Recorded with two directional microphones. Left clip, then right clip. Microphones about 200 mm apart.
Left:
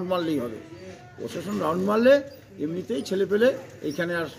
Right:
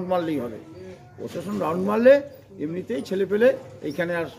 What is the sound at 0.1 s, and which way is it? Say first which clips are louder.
Speech: right 2 dB; centre (ahead or behind).